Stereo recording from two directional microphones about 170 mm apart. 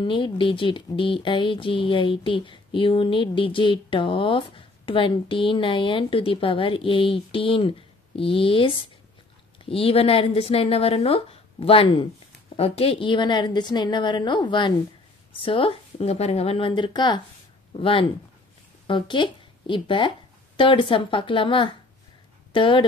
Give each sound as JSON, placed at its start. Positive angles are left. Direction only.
{"t": 0.0, "sound": "a woman's voice", "side_deg": 30}